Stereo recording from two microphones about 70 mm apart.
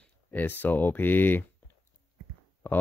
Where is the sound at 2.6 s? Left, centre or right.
Left.